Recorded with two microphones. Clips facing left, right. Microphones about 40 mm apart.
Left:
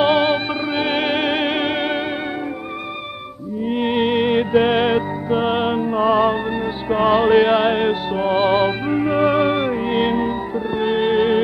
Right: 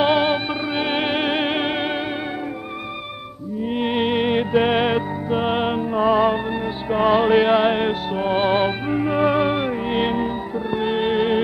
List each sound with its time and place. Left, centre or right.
0.0 s music: centre
3.6 s music: centre